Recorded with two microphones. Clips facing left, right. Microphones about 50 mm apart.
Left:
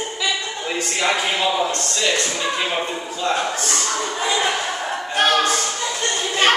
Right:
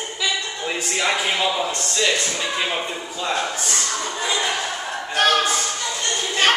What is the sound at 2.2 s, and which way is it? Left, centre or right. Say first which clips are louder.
Speech: left 2 dB; centre.